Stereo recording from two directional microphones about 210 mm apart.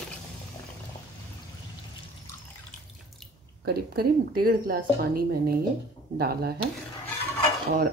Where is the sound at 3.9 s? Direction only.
45° right (ahead or behind).